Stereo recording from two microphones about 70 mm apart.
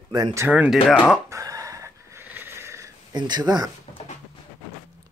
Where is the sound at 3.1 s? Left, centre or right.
Right.